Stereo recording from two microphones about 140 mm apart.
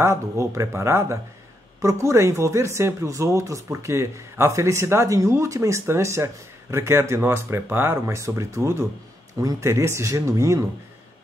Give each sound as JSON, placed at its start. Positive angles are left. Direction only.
{"t": 0.0, "sound": "speech", "side_deg": -20}